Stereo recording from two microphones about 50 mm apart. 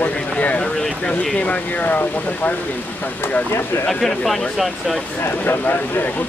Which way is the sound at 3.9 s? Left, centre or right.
Centre.